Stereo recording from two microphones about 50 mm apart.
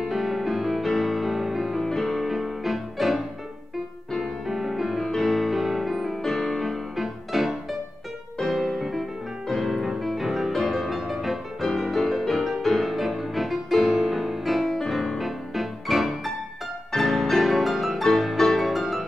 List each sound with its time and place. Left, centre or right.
0.0 s music: centre
6.2 s music: centre